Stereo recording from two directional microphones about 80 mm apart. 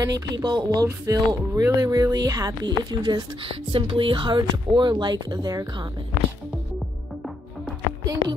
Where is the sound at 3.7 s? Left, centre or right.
Right.